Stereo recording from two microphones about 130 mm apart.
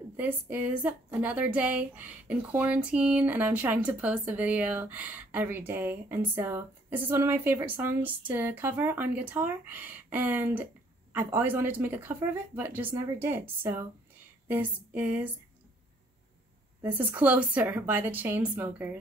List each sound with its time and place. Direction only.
0.2 s a woman's voice: 15° right (ahead or behind)
16.8 s a woman's voice: 10° right (ahead or behind)